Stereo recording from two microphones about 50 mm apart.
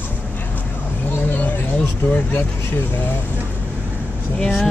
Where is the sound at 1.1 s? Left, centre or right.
Left.